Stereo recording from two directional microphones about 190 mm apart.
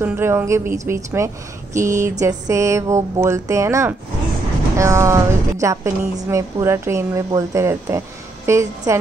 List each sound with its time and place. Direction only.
0.0 s a woman's voice: 10° right (ahead or behind)
1.8 s speech: 40° right (ahead or behind)
2.1 s a woman's voice: 15° right (ahead or behind)